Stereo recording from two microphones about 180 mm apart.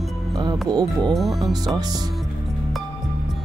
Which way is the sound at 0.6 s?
25° right (ahead or behind).